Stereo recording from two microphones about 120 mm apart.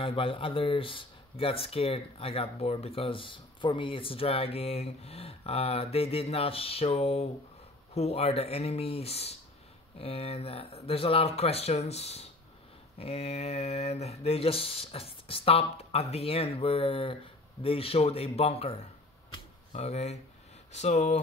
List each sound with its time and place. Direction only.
0.0 s speech: 50° left (ahead or behind); by 21.2 s 75° left (ahead or behind)